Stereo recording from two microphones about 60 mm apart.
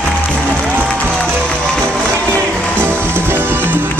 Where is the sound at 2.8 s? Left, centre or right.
Right.